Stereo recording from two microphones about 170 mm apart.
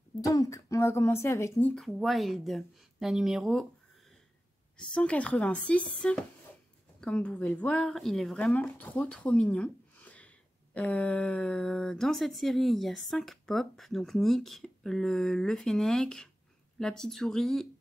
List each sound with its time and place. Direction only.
0.3 s speech: 20° left (ahead or behind)
1.7 s speech: centre (ahead or behind)
4.7 s speech: 5° left (ahead or behind)